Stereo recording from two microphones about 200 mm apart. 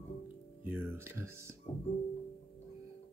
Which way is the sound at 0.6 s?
10° right (ahead or behind).